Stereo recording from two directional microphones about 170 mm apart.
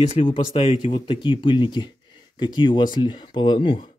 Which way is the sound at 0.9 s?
30° left (ahead or behind).